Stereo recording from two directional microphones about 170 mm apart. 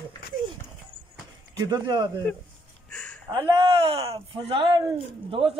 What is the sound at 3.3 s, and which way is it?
Speech, 25° right (ahead or behind).